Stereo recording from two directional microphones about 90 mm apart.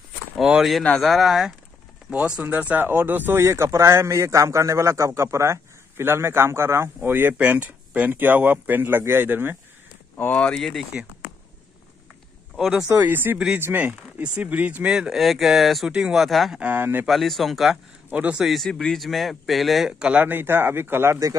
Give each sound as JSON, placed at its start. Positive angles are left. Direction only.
{"t": 0.4, "sound": "speech", "side_deg": -5}
{"t": 10.1, "sound": "speech", "side_deg": 20}
{"t": 10.5, "sound": "speech", "side_deg": 0}
{"t": 12.5, "sound": "speech", "side_deg": -5}
{"t": 12.9, "sound": "speech", "side_deg": -20}
{"t": 16.5, "sound": "speech", "side_deg": -20}
{"t": 17.0, "sound": "speech", "side_deg": 0}
{"t": 18.1, "sound": "speech", "side_deg": -15}
{"t": 18.4, "sound": "speech", "side_deg": 0}